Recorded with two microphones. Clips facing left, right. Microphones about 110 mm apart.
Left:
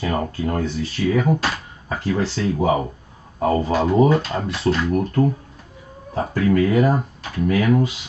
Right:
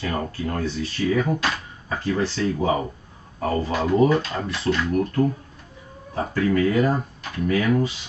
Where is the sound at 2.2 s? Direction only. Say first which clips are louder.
Left 3 dB; 15° left (ahead or behind).